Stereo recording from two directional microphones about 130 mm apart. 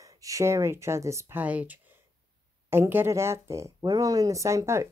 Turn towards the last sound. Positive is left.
turn(degrees=-20)  # may be behind; listen again after turning